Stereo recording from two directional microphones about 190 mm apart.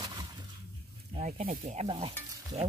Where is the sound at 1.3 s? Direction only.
45° right (ahead or behind); by 2.7 s 30° right (ahead or behind).